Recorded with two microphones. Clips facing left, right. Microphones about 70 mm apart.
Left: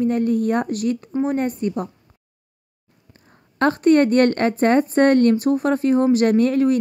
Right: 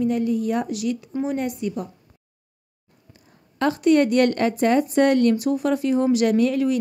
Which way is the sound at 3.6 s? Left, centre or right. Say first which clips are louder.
Left 3 dB; left.